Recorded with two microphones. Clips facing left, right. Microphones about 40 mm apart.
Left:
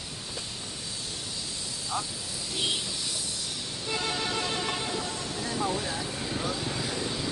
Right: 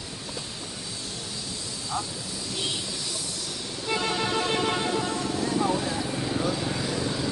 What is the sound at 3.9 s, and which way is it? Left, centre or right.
Music, right.